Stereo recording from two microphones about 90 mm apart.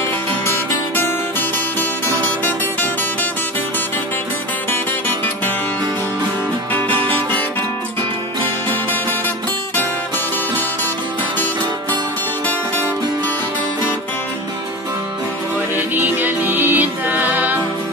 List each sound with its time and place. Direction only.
6.7 s music: 20° left (ahead or behind)
15.7 s music: 20° right (ahead or behind)